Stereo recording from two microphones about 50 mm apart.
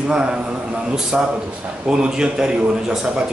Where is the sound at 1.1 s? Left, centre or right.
Centre.